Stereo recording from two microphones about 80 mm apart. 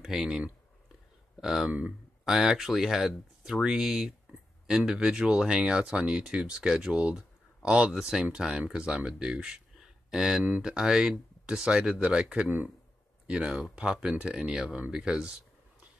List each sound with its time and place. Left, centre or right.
0.0 s speech: centre
1.7 s speech: centre
2.2 s speech: centre
12.4 s speech: right
13.3 s speech: centre